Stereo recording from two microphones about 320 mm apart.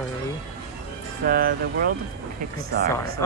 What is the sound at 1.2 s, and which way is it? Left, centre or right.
Speech, right.